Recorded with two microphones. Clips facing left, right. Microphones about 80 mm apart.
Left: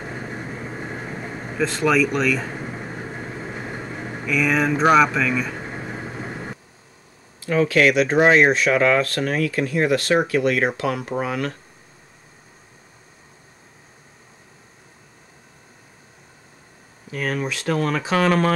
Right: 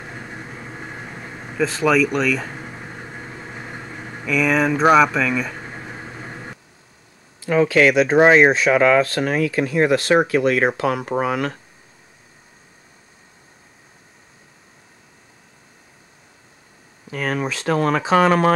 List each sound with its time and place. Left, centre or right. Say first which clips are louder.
0.0 s vehicle: left 3 dB; centre
7.4 s speech: right 2 dB; centre
17.1 s speech: right 2 dB; centre
18.1 s speech: right 3 dB; centre